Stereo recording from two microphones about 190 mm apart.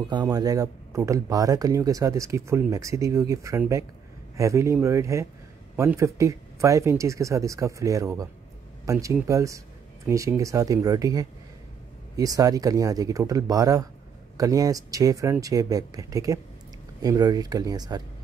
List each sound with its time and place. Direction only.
0.1 s speech: 20° right (ahead or behind)